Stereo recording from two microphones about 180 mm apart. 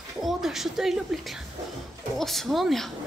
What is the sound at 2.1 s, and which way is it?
Speech, centre (ahead or behind).